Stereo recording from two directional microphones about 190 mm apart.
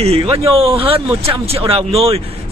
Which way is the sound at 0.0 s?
30° right (ahead or behind).